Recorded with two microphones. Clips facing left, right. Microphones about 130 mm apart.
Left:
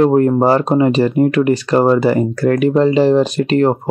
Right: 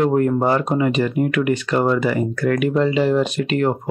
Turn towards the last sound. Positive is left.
turn(degrees=35)  # may be behind; listen again after turning